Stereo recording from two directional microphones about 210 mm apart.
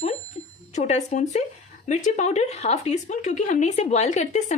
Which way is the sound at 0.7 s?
35° left (ahead or behind).